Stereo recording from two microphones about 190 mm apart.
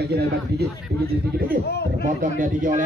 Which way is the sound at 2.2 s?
45° right (ahead or behind).